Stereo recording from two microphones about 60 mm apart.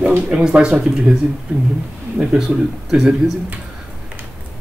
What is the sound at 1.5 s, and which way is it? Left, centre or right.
Speech, right.